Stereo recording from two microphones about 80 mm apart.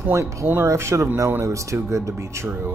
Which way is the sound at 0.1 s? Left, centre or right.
Right.